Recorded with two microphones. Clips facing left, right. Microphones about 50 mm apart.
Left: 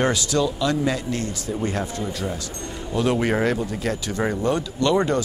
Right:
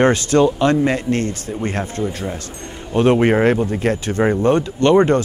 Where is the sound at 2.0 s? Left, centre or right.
Right.